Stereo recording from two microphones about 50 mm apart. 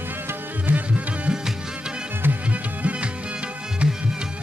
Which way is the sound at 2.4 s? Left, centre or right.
Right.